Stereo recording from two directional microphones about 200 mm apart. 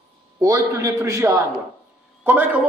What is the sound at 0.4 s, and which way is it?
A man's voice, 15° right (ahead or behind).